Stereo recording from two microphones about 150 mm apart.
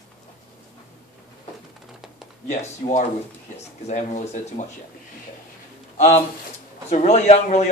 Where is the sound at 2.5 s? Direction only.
55° left (ahead or behind).